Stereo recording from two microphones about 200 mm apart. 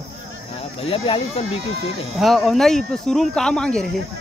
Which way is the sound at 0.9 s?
30° left (ahead or behind).